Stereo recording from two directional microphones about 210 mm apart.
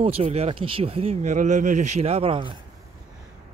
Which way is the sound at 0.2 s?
30° right (ahead or behind).